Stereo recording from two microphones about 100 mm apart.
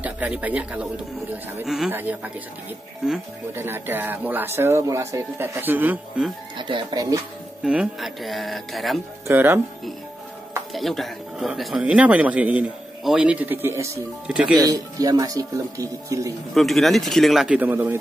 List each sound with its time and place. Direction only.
0.0 s speech: 15° right (ahead or behind)
1.9 s speech: 20° right (ahead or behind)
3.5 s speech: 20° right (ahead or behind)
5.4 s speech: 20° right (ahead or behind)
6.7 s speech: 50° right (ahead or behind)
7.6 s speech: 10° right (ahead or behind)
9.3 s speech: 20° right (ahead or behind)
10.7 s speech: centre (ahead or behind)
11.8 s speech: 10° right (ahead or behind); by 13.9 s 25° right (ahead or behind)
14.2 s speech: 10° right (ahead or behind)
14.6 s speech: 40° right (ahead or behind)
16.5 s speech: centre (ahead or behind)
17.5 s speech: 20° right (ahead or behind)